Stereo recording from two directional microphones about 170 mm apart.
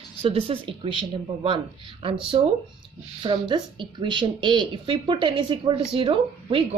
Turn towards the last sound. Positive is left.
turn(degrees=-30)  # may be behind; listen again after turning